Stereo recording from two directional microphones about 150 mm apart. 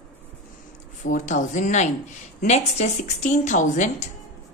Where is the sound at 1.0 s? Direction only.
55° left (ahead or behind).